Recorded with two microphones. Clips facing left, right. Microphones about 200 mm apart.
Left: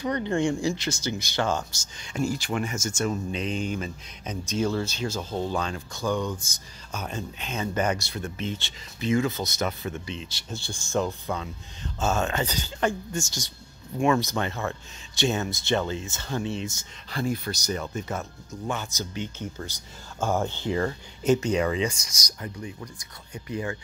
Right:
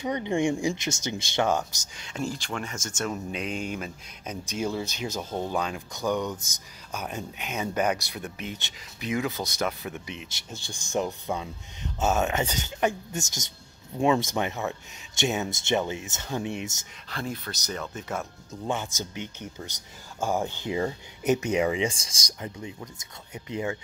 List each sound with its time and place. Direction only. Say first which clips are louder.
0.0 s speech: left 1 dB; 20° right (ahead or behind)
2.0 s speech: left 4 dB; centre (ahead or behind)
3.0 s speech: left 2 dB; 5° right (ahead or behind)
17.1 s speech: left 5 dB; 5° left (ahead or behind)
18.5 s speech: right 1 dB; 20° right (ahead or behind)